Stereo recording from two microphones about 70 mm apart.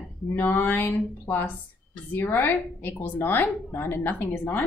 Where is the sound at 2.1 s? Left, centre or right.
Left.